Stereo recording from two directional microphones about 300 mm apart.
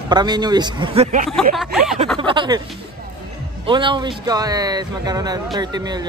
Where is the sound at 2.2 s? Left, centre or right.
Centre.